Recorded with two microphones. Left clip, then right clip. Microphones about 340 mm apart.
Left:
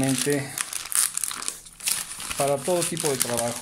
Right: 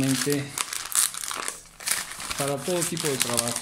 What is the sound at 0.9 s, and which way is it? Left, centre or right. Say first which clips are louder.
Crumpling: right 1 dB; centre.